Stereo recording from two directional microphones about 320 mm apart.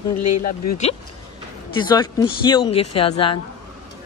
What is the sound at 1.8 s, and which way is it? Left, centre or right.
Speech, centre.